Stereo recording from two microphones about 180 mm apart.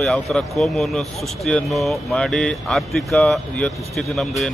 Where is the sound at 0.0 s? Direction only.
Centre (ahead or behind).